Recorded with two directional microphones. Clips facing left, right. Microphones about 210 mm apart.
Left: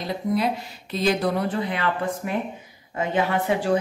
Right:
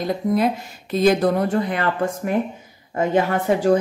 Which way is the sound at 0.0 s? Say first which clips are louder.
Right 4 dB; 45° right (ahead or behind).